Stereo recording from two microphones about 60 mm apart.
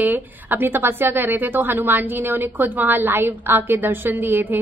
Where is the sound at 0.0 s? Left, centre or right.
Right.